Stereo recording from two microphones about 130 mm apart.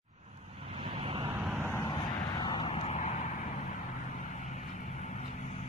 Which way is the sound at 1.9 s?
35° left (ahead or behind).